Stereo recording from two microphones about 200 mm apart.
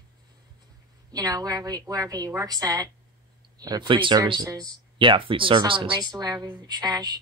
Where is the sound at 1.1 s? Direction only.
20° right (ahead or behind).